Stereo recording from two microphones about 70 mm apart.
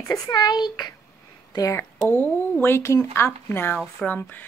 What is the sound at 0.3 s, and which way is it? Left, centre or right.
A child's voice, left.